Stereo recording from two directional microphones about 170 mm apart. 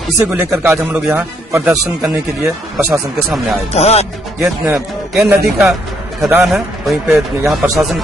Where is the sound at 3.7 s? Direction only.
40° left (ahead or behind).